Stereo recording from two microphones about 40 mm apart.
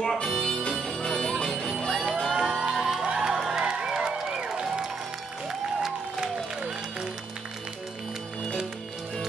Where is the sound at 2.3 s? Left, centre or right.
Centre.